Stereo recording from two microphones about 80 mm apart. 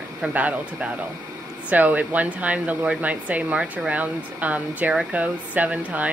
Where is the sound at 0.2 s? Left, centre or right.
Centre.